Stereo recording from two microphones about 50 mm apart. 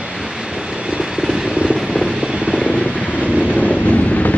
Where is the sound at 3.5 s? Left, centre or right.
Left.